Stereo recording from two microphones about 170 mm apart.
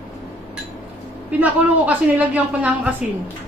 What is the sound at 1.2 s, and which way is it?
A man's voice, 10° right (ahead or behind).